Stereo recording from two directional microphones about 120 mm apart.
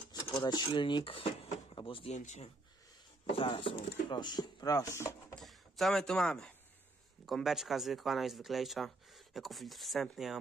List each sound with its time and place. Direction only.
0.1 s speech: 35° left (ahead or behind)
2.1 s speech: 80° left
3.3 s speech: 50° left (ahead or behind); by 5.1 s 25° left (ahead or behind)
5.3 s speech: centre (ahead or behind)